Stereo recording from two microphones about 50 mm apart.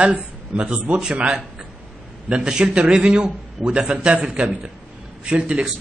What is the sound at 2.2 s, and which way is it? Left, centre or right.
A man's voice, centre.